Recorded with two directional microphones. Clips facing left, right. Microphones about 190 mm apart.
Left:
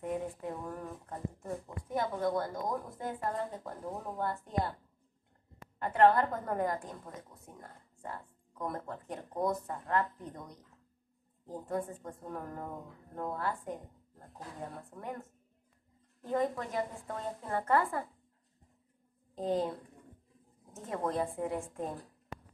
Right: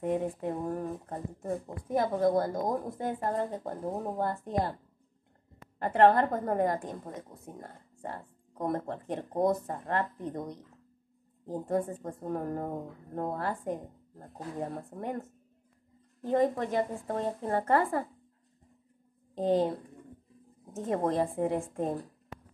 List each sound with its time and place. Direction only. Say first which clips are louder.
0.0 s a woman's voice: right 6 dB; 25° right (ahead or behind)
5.8 s a woman's voice: right 3 dB; 30° right (ahead or behind)
19.3 s speech: right 6 dB; 25° right (ahead or behind)
20.9 s a woman's voice: right 5 dB; 35° right (ahead or behind)